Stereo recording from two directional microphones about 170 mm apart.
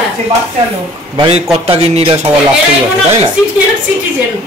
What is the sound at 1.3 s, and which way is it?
Speech, 35° right (ahead or behind).